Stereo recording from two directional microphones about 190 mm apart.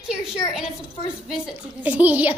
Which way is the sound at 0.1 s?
5° right (ahead or behind).